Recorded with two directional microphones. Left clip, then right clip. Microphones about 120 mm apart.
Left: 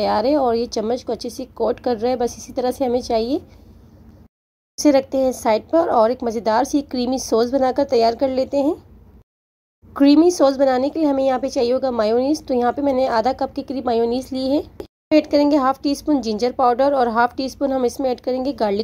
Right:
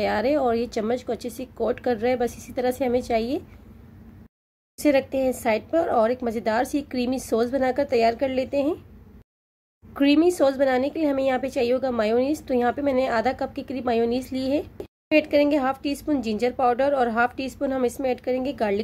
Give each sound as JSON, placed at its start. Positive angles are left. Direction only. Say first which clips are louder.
{"t": 0.0, "sound": "a woman's voice", "louder": "left 5 dB", "side_deg": 25}
{"t": 4.8, "sound": "a woman's voice", "louder": "left 5 dB", "side_deg": 30}
{"t": 7.2, "sound": "a woman's voice", "louder": "left 7 dB", "side_deg": -10}
{"t": 7.5, "sound": "a woman's voice", "louder": "left 5 dB", "side_deg": 25}
{"t": 9.9, "sound": "a woman's voice", "louder": "left 6 dB", "side_deg": 20}